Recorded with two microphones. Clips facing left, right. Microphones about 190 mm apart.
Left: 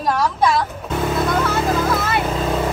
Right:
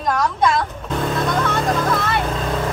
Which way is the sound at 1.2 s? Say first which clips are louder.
Left 2 dB; 5° left (ahead or behind).